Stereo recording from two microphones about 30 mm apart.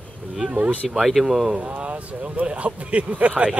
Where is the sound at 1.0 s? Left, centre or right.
Centre.